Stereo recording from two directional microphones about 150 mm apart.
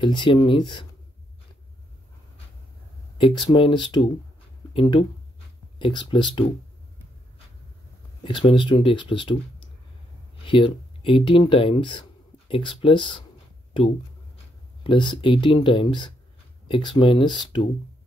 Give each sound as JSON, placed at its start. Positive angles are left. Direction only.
{"t": 0.0, "sound": "speech", "side_deg": 35}
{"t": 3.2, "sound": "speech", "side_deg": 35}
{"t": 8.2, "sound": "speech", "side_deg": 35}
{"t": 10.4, "sound": "speech", "side_deg": 35}
{"t": 14.8, "sound": "speech", "side_deg": 30}